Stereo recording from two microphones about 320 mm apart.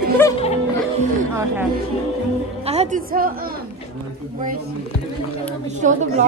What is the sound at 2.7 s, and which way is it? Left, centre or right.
Speech, right.